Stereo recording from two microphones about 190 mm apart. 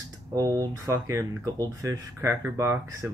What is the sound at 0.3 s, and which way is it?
Speech, 20° right (ahead or behind).